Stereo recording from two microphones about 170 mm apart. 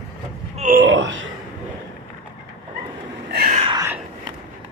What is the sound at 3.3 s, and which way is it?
Whispering, 50° right (ahead or behind).